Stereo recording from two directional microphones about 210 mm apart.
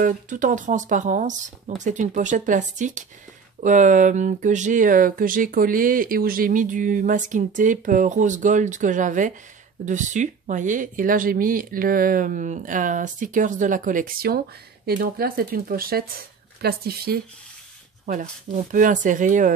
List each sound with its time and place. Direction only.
0.0 s speech: 35° right (ahead or behind)
18.5 s speech: 40° right (ahead or behind)